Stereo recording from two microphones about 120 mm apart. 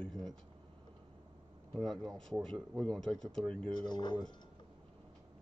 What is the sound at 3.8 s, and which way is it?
Speech, 40° left (ahead or behind).